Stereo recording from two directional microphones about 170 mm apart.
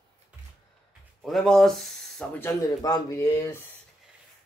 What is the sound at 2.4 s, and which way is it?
Speech, 15° left (ahead or behind).